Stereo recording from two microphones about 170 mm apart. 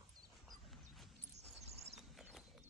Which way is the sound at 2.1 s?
Centre (ahead or behind).